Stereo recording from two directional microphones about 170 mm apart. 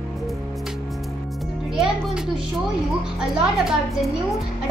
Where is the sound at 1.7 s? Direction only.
5° right (ahead or behind).